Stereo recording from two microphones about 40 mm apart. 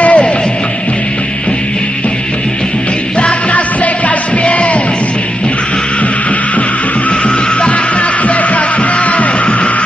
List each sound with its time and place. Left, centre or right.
0.0 s music: left
3.2 s music: left
7.1 s music: left